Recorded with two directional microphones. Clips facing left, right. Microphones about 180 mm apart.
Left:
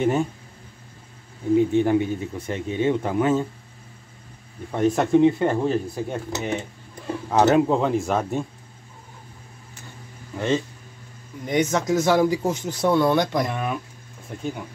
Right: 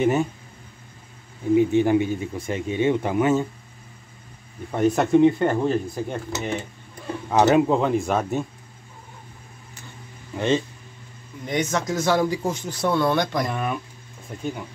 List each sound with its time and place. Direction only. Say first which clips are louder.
0.0 s speech: right 1 dB; 5° right (ahead or behind)
1.5 s speech: right 1 dB; 5° right (ahead or behind)
4.7 s speech: even; 5° right (ahead or behind)
10.3 s speech: right 1 dB; 20° right (ahead or behind)
11.4 s speech: left 3 dB; 20° left (ahead or behind)
13.5 s speech: even; centre (ahead or behind)